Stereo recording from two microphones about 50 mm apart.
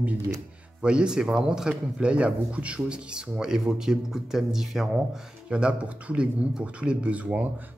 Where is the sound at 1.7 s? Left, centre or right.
Right.